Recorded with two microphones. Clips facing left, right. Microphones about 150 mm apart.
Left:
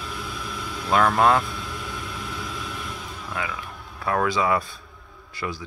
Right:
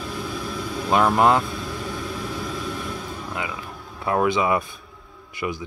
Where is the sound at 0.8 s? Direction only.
15° right (ahead or behind).